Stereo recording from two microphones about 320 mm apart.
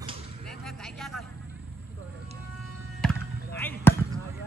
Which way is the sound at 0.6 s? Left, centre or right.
Centre.